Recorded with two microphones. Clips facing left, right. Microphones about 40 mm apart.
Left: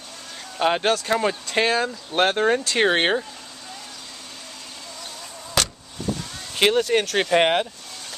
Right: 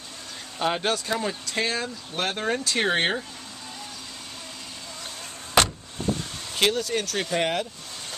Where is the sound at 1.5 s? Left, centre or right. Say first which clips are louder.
Left 6 dB; left.